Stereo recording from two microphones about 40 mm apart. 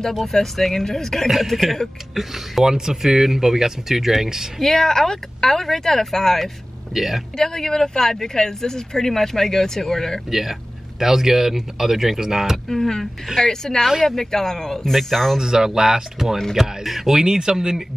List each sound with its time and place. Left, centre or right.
0.1 s speech: centre
1.3 s speech: centre
4.6 s speech: centre
6.9 s speech: centre
7.3 s speech: centre
10.3 s speech: centre
12.6 s speech: centre
14.9 s speech: centre
15.3 s speech: centre
17.2 s speech: centre